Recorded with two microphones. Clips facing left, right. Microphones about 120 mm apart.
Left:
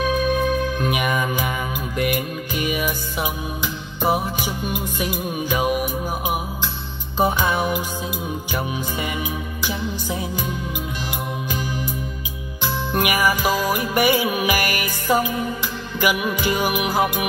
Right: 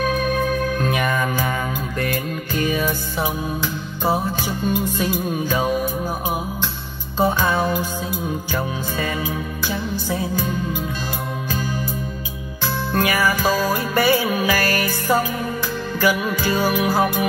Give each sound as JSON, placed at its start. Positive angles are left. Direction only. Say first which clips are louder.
{"t": 0.8, "sound": "music", "louder": "right 1 dB", "side_deg": 15}